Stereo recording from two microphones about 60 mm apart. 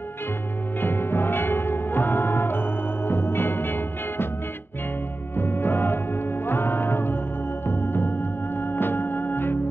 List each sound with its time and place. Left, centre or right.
0.7 s music: left
5.3 s music: left